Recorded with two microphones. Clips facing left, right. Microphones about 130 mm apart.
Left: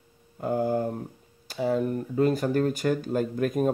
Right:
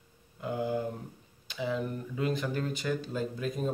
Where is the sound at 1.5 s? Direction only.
45° left (ahead or behind).